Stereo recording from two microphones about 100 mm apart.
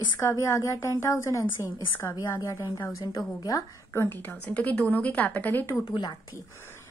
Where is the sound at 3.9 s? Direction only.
20° left (ahead or behind).